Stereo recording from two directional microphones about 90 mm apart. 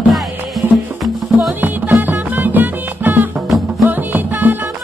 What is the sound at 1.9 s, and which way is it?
Music, 20° right (ahead or behind).